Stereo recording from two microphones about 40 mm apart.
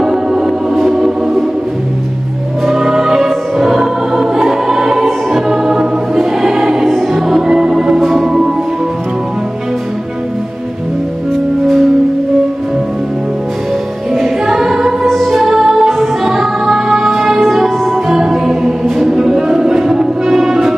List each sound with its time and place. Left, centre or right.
0.0 s music: centre
2.6 s music: centre
6.1 s choir: centre
6.9 s music: centre
7.4 s music: centre
14.1 s music: centre
18.0 s music: centre
18.3 s choir: centre